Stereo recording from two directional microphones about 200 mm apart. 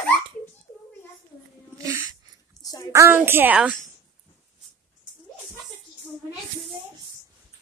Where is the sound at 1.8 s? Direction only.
15° right (ahead or behind).